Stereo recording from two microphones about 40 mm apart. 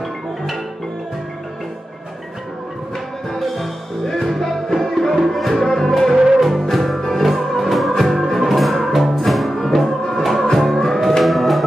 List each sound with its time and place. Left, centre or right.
3.3 s music: centre
6.1 s music: centre
6.7 s music: centre